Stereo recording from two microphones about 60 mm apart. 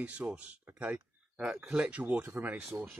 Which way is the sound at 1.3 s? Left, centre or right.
Centre.